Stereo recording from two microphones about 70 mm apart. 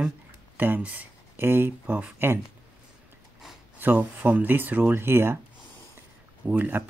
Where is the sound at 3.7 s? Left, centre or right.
Right.